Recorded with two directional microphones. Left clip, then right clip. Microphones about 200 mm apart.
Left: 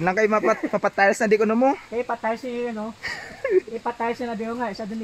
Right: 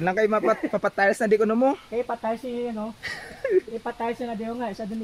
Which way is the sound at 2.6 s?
20° left (ahead or behind).